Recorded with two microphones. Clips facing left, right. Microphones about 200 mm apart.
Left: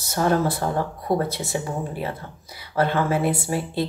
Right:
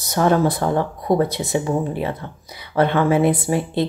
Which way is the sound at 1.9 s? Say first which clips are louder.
Right 5 dB; 20° right (ahead or behind).